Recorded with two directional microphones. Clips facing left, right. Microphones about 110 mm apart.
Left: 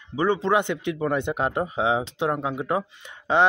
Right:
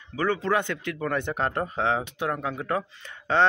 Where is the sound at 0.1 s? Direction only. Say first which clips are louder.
Left 3 dB; 20° left (ahead or behind).